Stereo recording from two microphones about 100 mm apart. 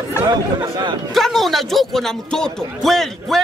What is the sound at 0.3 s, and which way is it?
Speech, 40° right (ahead or behind).